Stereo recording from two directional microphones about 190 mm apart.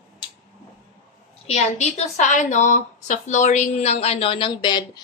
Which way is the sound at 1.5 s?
35° left (ahead or behind).